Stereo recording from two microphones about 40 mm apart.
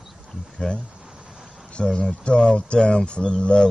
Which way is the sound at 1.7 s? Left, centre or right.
Left.